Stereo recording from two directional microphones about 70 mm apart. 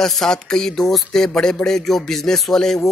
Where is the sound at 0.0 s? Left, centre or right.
Centre.